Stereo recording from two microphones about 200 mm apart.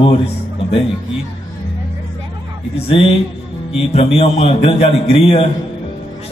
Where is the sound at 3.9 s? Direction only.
30° left (ahead or behind).